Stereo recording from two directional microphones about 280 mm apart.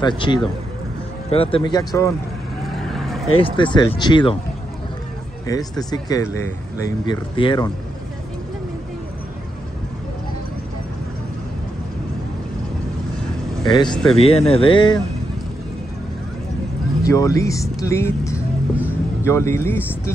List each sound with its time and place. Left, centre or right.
0.0 s speech: centre
2.8 s vehicle: centre
3.3 s speech: centre
5.5 s speech: centre
13.7 s speech: centre
17.0 s speech: centre